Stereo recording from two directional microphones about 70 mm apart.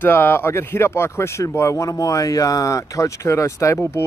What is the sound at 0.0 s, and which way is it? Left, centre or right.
Speech, left.